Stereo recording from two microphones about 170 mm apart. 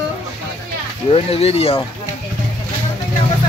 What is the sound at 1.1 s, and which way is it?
Speech, 35° left (ahead or behind).